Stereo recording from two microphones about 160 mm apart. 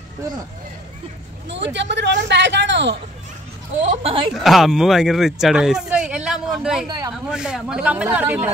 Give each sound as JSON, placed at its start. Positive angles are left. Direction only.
{"t": 1.5, "sound": "speech", "side_deg": -90}
{"t": 3.8, "sound": "speech", "side_deg": -35}
{"t": 4.3, "sound": "speech", "side_deg": 0}